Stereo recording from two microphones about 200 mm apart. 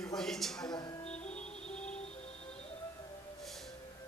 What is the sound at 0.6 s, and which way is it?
Music, 20° left (ahead or behind).